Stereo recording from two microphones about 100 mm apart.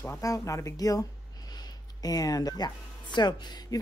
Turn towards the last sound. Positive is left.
turn(degrees=45)  # may be behind; listen again after turning